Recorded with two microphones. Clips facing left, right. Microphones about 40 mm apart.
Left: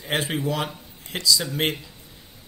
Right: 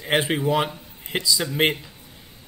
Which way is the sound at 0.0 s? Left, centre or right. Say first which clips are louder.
Right 4 dB; right.